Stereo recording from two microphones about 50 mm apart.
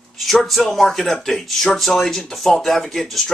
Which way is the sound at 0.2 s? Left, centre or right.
Centre.